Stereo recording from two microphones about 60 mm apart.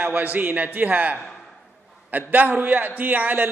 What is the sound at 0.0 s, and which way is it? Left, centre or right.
A man's voice, right.